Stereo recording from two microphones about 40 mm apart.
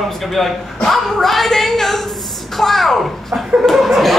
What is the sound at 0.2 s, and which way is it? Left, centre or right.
A woman's voice, centre.